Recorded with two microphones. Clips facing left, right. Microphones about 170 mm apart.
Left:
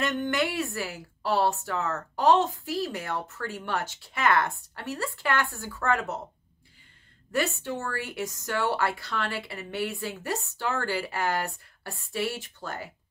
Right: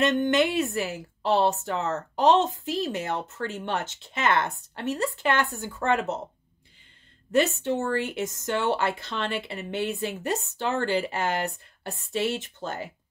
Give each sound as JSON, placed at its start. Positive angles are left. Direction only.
{"t": 0.0, "sound": "a woman's voice", "side_deg": -20}
{"t": 7.3, "sound": "a woman's voice", "side_deg": -20}